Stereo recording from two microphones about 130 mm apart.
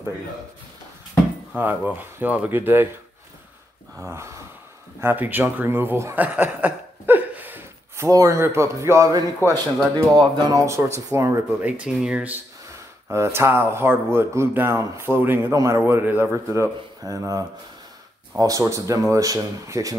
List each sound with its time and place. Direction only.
1.6 s speech: 15° right (ahead or behind)
4.0 s speech: 20° right (ahead or behind)
8.1 s speech: 25° right (ahead or behind)
9.4 s speech: 15° left (ahead or behind)
10.1 s speech: 30° right (ahead or behind)
11.6 s speech: 10° right (ahead or behind)
13.1 s speech: 20° right (ahead or behind)